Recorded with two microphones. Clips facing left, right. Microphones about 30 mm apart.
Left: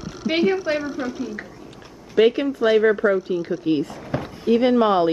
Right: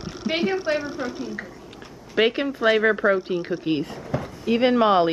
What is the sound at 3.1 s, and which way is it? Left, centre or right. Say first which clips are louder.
Speech: left 1 dB; right.